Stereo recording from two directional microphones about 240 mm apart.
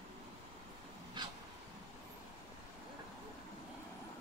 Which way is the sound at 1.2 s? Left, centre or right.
Centre.